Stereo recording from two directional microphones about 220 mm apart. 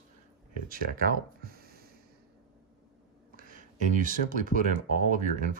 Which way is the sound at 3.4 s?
35° right (ahead or behind).